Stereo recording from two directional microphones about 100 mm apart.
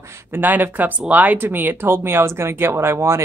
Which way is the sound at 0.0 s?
25° right (ahead or behind).